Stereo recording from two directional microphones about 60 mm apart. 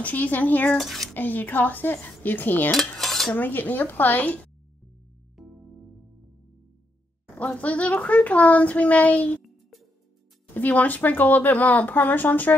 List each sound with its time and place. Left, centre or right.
0.0 s a woman's voice: left
0.7 s speech: centre
1.1 s cutlery: left
3.0 s cutlery: centre
3.3 s cutlery: left
5.3 s music: centre
7.3 s a woman's voice: left
10.5 s a woman's voice: left